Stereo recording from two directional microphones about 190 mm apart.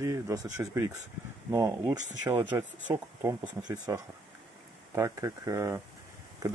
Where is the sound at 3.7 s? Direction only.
20° right (ahead or behind).